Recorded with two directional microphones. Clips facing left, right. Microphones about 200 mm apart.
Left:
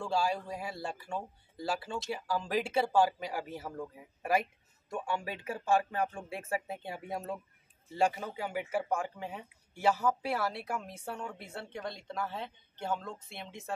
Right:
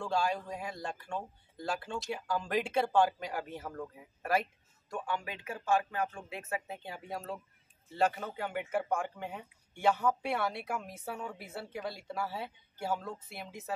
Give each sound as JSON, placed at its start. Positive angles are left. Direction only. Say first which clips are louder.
{"t": 0.0, "sound": "speech", "louder": "left 1 dB", "side_deg": 5}
{"t": 5.0, "sound": "speech", "louder": "left 2 dB", "side_deg": 30}
{"t": 7.9, "sound": "speech", "louder": "left 1 dB", "side_deg": 10}